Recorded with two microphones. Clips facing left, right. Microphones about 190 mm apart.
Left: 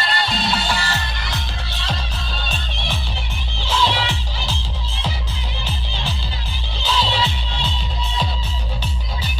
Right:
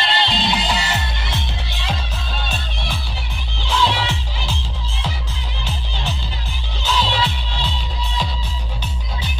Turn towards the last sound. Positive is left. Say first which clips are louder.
# right 1 dB
turn(degrees=0)  # may be behind; listen again after turning